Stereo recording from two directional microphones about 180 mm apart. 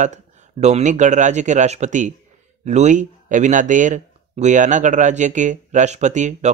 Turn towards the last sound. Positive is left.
turn(degrees=-45)  # may be behind; listen again after turning